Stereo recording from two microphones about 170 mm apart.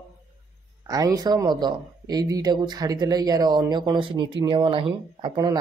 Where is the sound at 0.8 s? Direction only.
20° right (ahead or behind).